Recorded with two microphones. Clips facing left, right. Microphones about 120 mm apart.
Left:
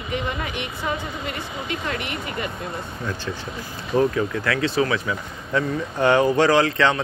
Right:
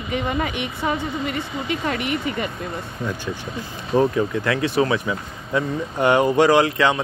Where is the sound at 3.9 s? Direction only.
25° right (ahead or behind).